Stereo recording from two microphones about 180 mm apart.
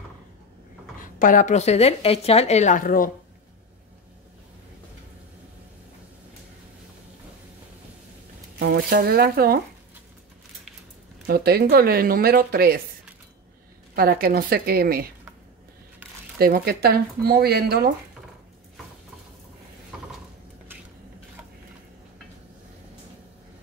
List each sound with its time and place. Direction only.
0.9 s a woman's voice: 50° left (ahead or behind)
8.5 s speech: 60° right (ahead or behind)
11.2 s speech: 60° right (ahead or behind)
13.9 s speech: 55° right (ahead or behind)
16.3 s speech: 55° right (ahead or behind)